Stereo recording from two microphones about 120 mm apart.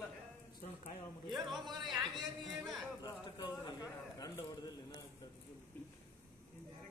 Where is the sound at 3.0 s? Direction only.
35° left (ahead or behind).